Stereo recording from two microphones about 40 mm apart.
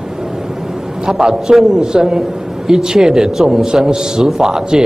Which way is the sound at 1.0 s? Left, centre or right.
Centre.